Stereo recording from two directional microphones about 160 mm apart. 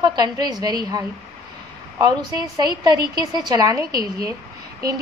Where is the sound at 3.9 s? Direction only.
70° right (ahead or behind).